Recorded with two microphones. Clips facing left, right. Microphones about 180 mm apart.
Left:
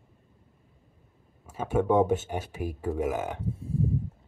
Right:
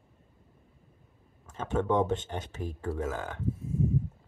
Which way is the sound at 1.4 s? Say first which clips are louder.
Left 4 dB; 10° left (ahead or behind).